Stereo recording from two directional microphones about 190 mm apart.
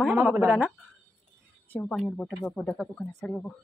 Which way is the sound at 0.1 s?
10° right (ahead or behind).